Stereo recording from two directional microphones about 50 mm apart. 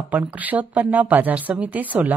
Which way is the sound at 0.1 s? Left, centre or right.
Right.